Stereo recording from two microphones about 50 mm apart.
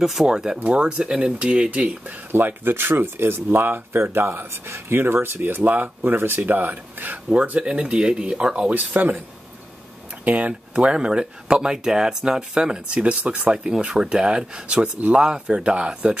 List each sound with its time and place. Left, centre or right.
0.0 s speech: centre
0.3 s speech: centre
2.3 s speech: right
4.0 s speech: right
7.5 s speech: right
8.7 s speech: right
10.2 s speech: right
13.5 s speech: centre